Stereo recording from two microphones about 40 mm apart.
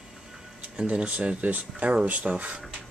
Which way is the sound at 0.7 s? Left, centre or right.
Right.